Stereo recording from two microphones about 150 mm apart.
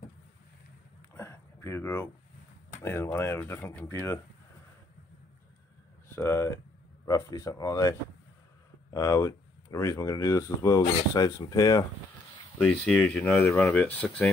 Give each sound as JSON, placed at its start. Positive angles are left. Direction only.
{"t": 1.1, "sound": "a sound", "side_deg": 15}
{"t": 2.7, "sound": "speech", "side_deg": 15}
{"t": 6.1, "sound": "speech", "side_deg": 15}
{"t": 8.9, "sound": "speech", "side_deg": 20}
{"t": 12.5, "sound": "speech", "side_deg": 5}